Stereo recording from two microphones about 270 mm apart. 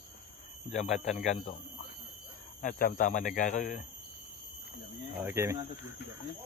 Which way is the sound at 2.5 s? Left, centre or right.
Left.